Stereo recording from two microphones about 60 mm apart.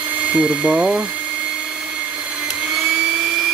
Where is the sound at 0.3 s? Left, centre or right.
Centre.